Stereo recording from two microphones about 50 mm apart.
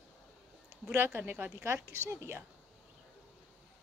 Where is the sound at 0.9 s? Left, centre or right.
Right.